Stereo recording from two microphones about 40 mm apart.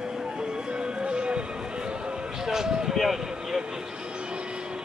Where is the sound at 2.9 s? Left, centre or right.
Centre.